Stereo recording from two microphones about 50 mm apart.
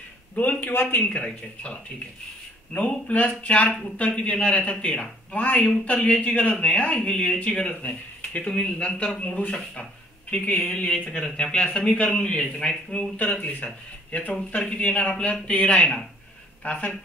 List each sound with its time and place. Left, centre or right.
0.4 s a man's voice: left; by 9.4 s centre
10.3 s a man's voice: left
13.2 s a man's voice: left